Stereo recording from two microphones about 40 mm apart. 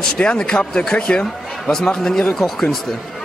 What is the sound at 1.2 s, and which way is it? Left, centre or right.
Speech, centre.